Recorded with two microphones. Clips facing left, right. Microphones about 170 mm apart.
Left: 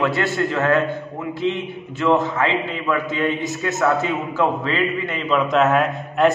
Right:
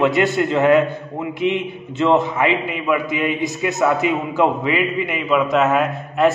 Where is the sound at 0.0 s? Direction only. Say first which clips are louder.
Right 4 dB; 20° right (ahead or behind).